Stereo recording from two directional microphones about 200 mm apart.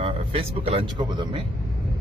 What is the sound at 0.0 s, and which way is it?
A man's voice, 30° right (ahead or behind).